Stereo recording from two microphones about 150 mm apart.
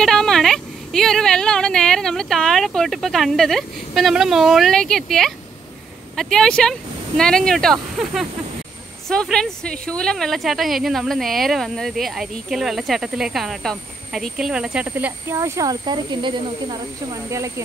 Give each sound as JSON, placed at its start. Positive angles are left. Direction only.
{"t": 0.0, "sound": "a woman's voice", "side_deg": 5}
{"t": 17.1, "sound": "speech", "side_deg": -20}